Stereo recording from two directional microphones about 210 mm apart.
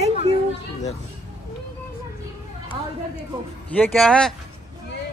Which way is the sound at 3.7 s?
5° left (ahead or behind).